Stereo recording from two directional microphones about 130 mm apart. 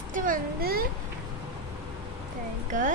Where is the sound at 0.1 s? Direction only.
90° right.